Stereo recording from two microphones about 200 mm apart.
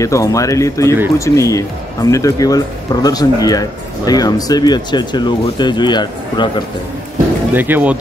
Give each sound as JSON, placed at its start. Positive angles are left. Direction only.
{"t": 0.0, "sound": "speech", "side_deg": 15}
{"t": 7.5, "sound": "speech", "side_deg": -10}